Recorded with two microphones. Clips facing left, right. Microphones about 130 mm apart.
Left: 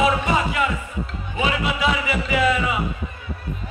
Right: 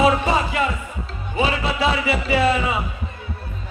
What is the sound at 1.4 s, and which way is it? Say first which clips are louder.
Speech: right 2 dB; 30° right (ahead or behind).